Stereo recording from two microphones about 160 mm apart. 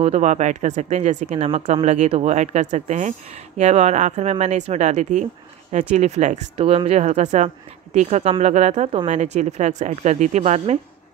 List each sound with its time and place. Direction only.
0.0 s speech: 45° right (ahead or behind)
6.5 s speech: 35° right (ahead or behind)